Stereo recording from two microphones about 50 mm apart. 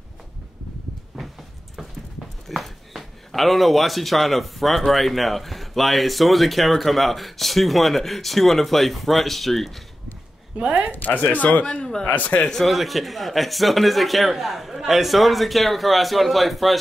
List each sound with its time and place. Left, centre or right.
2.4 s speech: centre
10.6 s speech: right
10.9 s speech: left
11.6 s speech: centre
12.1 s speech: left
12.4 s speech: centre
12.6 s speech: centre